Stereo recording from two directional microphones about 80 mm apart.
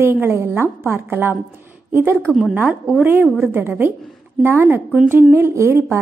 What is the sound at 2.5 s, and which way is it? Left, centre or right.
A woman's voice, centre.